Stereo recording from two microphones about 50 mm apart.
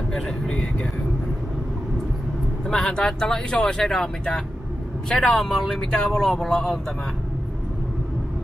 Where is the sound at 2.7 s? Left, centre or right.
Centre.